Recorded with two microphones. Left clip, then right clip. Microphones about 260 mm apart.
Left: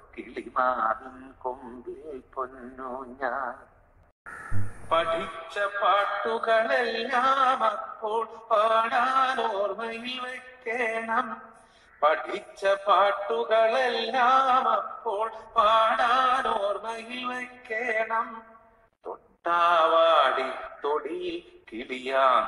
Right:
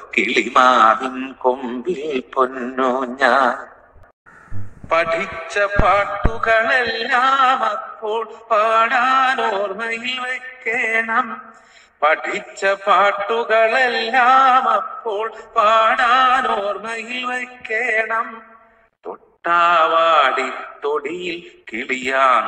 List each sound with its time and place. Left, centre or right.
0.1 s a man's voice: right
4.8 s a man's voice: right
6.5 s a sound: right